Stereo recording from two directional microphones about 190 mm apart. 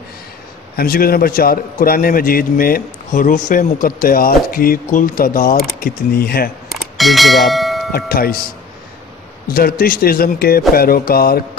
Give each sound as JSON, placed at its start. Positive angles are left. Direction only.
{"t": 0.7, "sound": "a man's voice", "side_deg": 50}
{"t": 6.7, "sound": "bell", "side_deg": 0}
{"t": 7.9, "sound": "a man's voice", "side_deg": 50}
{"t": 9.5, "sound": "a man's voice", "side_deg": 50}